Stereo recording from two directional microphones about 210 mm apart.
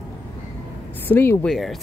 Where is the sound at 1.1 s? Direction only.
10° left (ahead or behind).